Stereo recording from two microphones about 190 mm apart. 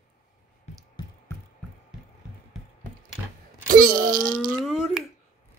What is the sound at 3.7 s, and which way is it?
Wail, 50° right (ahead or behind).